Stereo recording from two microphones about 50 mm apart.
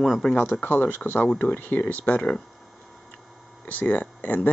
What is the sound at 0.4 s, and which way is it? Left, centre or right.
Speech, left.